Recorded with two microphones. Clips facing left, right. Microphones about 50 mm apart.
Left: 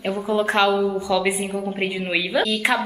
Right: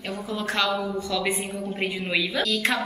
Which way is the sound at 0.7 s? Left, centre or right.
Centre.